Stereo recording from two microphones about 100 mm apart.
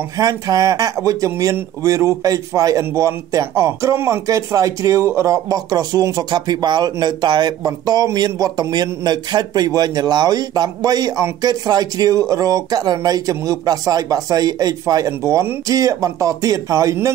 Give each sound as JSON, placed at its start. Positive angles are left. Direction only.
{"t": 0.2, "sound": "speech", "side_deg": -40}